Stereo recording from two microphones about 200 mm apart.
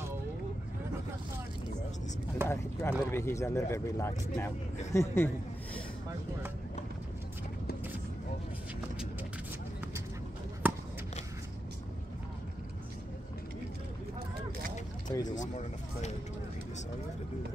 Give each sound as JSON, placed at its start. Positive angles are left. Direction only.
{"t": 2.4, "sound": "speech", "side_deg": 15}
{"t": 15.0, "sound": "speech", "side_deg": 20}
{"t": 15.3, "sound": "speech", "side_deg": 35}